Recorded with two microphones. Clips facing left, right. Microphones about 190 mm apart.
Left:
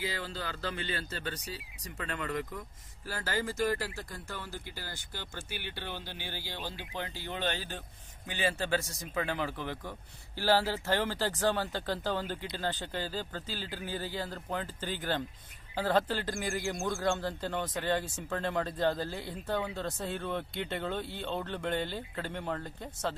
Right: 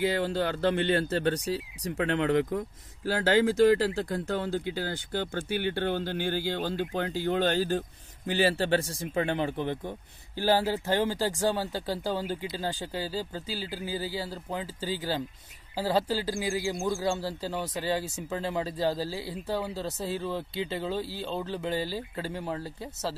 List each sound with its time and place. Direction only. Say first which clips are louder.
0.0 s speech: right 11 dB; 60° right (ahead or behind); by 23.1 s 10° right (ahead or behind)